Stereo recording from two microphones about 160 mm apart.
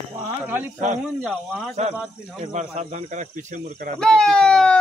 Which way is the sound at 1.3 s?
5° left (ahead or behind).